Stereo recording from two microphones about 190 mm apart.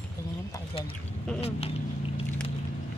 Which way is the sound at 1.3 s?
5° left (ahead or behind).